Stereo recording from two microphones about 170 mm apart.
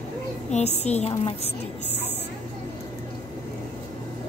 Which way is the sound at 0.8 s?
40° left (ahead or behind).